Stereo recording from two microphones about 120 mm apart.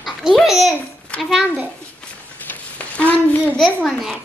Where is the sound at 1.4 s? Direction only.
15° right (ahead or behind).